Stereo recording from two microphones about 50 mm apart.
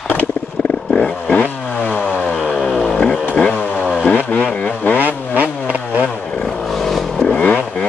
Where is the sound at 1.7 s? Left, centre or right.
Left.